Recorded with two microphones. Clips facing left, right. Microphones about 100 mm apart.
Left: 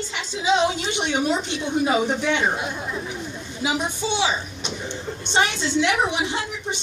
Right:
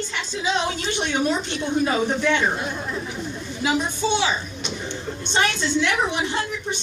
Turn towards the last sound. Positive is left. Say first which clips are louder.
# left 1 dB
turn(degrees=15)  # may be behind; listen again after turning